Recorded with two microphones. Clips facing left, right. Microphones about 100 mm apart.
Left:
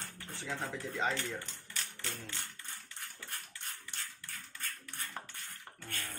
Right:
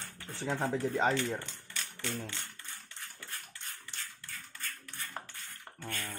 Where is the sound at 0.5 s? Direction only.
70° right (ahead or behind).